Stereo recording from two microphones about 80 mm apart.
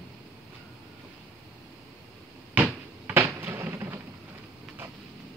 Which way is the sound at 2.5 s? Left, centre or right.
Centre.